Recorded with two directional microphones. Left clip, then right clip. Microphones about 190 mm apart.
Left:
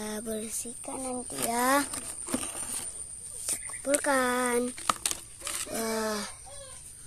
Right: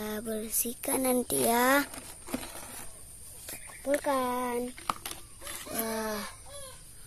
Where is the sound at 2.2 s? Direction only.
50° left (ahead or behind).